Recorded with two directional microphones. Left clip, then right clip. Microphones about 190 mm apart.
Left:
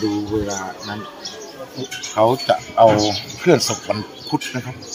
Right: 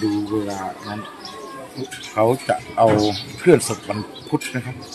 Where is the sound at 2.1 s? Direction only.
5° left (ahead or behind).